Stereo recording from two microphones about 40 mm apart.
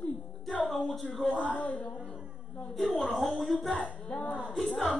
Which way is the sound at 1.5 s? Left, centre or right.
Left.